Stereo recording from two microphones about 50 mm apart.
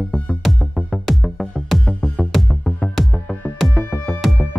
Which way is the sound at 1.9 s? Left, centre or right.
Left.